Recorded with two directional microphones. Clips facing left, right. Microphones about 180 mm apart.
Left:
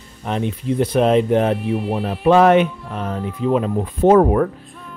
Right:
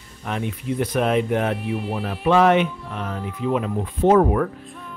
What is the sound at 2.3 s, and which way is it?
Speech, 45° left (ahead or behind).